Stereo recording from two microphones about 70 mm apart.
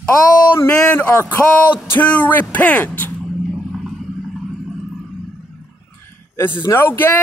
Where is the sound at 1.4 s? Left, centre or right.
Centre.